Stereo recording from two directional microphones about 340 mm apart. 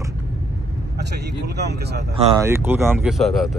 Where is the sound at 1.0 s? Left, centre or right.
Right.